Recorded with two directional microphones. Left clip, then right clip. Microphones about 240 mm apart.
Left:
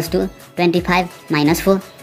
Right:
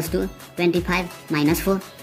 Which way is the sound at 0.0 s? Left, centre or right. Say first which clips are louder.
Left 5 dB; centre.